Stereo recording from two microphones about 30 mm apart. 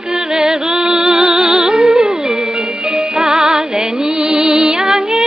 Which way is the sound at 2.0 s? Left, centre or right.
Centre.